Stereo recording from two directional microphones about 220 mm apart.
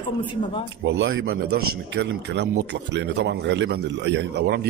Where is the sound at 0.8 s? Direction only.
55° right (ahead or behind).